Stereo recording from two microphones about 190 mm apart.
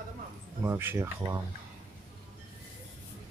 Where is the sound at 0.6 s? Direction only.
10° right (ahead or behind).